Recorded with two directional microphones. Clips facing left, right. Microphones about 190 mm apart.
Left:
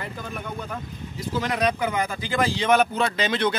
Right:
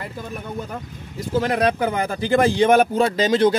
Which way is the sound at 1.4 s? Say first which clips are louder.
Right 4 dB; 55° right (ahead or behind).